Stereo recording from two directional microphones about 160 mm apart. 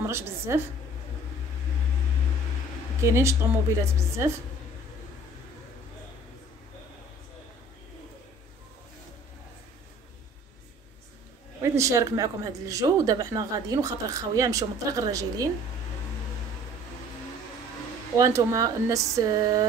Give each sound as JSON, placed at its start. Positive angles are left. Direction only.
{"t": 0.1, "sound": "a woman's voice", "side_deg": -15}
{"t": 3.0, "sound": "a woman's voice", "side_deg": -15}
{"t": 11.6, "sound": "speech", "side_deg": -20}
{"t": 18.1, "sound": "speech", "side_deg": -20}